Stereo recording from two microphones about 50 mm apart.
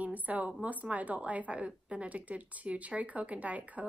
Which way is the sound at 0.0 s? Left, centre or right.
Right.